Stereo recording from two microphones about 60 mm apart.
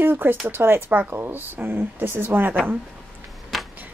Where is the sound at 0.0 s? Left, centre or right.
Right.